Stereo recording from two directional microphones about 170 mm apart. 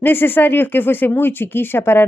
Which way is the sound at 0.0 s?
10° left (ahead or behind).